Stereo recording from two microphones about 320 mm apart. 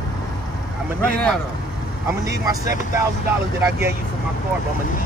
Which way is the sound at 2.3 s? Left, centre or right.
Centre.